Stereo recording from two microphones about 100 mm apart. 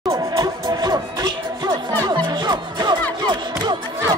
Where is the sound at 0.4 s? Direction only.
40° right (ahead or behind).